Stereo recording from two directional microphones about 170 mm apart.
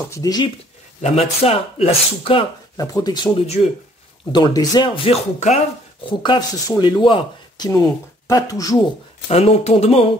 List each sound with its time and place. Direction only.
0.1 s speech: 20° left (ahead or behind)
1.0 s speech: 35° left (ahead or behind)
2.8 s speech: 20° left (ahead or behind)
9.3 s speech: 40° left (ahead or behind)